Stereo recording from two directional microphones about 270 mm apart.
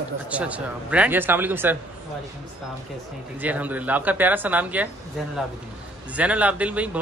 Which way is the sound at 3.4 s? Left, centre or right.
Centre.